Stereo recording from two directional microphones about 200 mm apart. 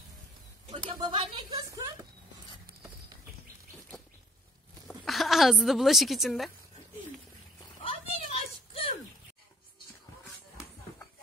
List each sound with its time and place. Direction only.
0.7 s speech: 25° right (ahead or behind)
4.8 s a woman's voice: centre (ahead or behind)
7.8 s a sound: 30° left (ahead or behind)